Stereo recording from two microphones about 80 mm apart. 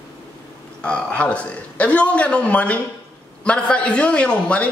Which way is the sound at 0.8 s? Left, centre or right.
Centre.